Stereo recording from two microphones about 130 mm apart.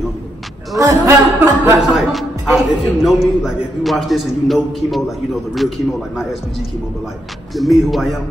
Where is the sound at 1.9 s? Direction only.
Centre (ahead or behind).